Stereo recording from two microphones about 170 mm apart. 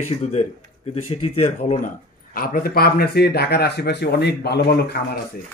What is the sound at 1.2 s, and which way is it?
Speech, 40° left (ahead or behind).